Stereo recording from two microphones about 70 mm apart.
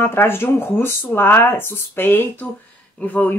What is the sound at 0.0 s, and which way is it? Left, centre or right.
A woman's voice, left.